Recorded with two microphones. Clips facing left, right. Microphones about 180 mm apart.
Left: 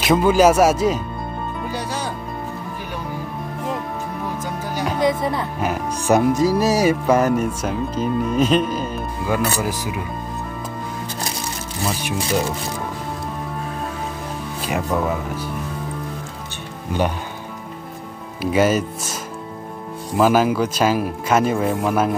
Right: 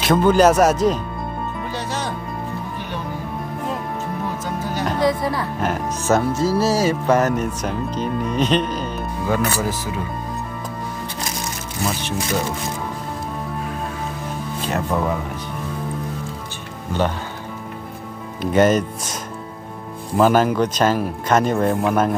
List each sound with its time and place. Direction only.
0.0 s music: 5° left (ahead or behind)
4.6 s music: 10° left (ahead or behind)
5.2 s speech: 20° left (ahead or behind)
5.6 s music: 10° left (ahead or behind)
14.6 s speech: 10° left (ahead or behind)
18.4 s music: 5° left (ahead or behind)
20.2 s music: 5° left (ahead or behind)